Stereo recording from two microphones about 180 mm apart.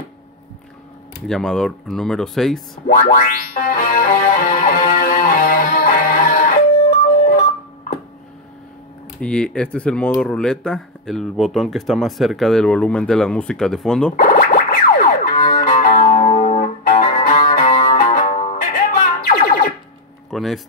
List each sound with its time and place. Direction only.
1.2 s speech: 5° left (ahead or behind)
2.9 s music: 50° left (ahead or behind)
9.2 s speech: 5° left (ahead or behind)
14.1 s music: 50° left (ahead or behind)
20.2 s speech: centre (ahead or behind)